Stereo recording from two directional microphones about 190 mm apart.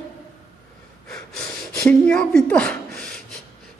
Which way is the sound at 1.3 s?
5° left (ahead or behind).